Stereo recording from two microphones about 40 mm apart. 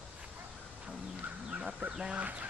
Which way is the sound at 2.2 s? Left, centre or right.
Right.